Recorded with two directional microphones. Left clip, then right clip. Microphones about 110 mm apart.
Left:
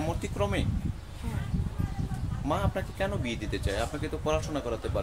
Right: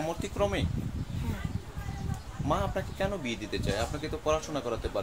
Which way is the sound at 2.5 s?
10° left (ahead or behind).